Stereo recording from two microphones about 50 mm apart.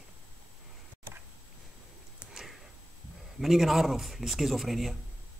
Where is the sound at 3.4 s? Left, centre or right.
Centre.